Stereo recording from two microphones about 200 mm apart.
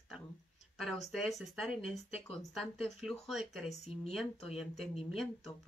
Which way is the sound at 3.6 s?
30° left (ahead or behind).